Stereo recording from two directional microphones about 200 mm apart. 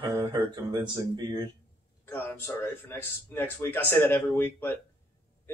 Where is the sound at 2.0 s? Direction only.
10° left (ahead or behind).